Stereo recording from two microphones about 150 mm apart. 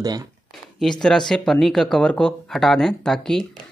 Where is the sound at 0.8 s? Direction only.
5° left (ahead or behind).